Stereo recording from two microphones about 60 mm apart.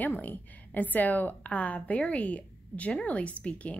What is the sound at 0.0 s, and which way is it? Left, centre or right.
A woman's voice, left.